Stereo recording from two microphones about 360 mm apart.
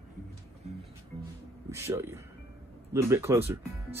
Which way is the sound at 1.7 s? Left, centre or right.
Centre.